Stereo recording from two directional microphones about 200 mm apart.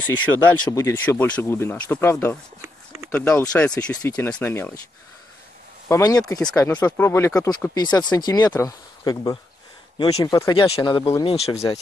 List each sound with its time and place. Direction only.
0.0 s speech: 15° left (ahead or behind)
2.6 s a sound: 10° right (ahead or behind)
3.1 s speech: 15° left (ahead or behind)
5.9 s speech: 15° left (ahead or behind)
6.4 s speech: 5° left (ahead or behind); by 11.6 s 30° left (ahead or behind)